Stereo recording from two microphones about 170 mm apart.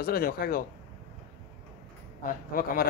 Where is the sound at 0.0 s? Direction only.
60° left (ahead or behind).